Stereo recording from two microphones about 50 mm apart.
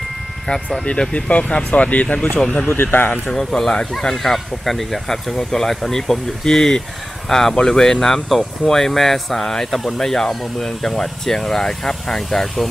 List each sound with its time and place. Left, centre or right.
0.5 s speech: centre
2.7 s speech: left
3.3 s speech: centre